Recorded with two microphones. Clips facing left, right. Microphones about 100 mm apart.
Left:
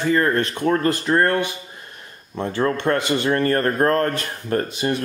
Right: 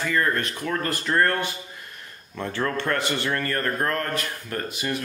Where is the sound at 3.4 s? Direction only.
35° left (ahead or behind).